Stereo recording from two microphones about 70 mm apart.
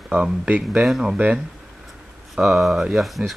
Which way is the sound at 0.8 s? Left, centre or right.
Centre.